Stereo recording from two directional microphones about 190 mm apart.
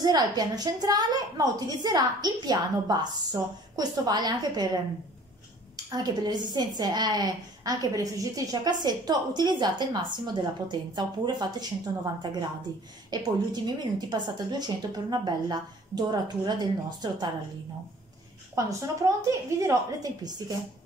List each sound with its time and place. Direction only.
0.0 s a woman's voice: 20° right (ahead or behind)
5.9 s a woman's voice: 20° right (ahead or behind)
18.5 s a woman's voice: 15° right (ahead or behind)